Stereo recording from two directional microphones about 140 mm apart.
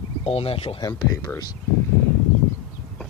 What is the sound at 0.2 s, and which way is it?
Speech, 45° left (ahead or behind).